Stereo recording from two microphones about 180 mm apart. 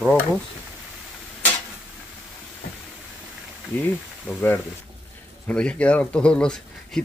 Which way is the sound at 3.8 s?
10° left (ahead or behind).